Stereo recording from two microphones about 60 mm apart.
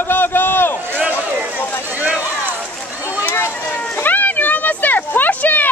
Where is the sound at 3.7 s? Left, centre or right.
Left.